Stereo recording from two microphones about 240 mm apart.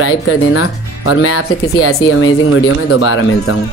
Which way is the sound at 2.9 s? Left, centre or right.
Left.